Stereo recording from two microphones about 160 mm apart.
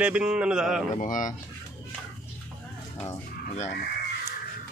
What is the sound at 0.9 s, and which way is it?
Speech, 55° left (ahead or behind).